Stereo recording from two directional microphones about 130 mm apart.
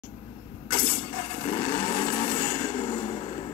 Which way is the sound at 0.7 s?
45° left (ahead or behind).